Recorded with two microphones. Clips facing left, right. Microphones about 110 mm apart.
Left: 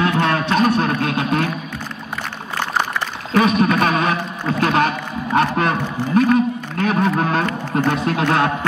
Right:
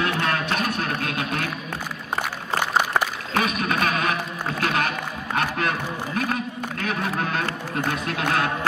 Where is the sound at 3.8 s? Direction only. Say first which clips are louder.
Left 6 dB; 30° left (ahead or behind).